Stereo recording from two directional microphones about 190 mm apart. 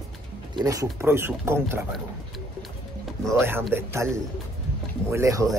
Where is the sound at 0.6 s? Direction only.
20° right (ahead or behind).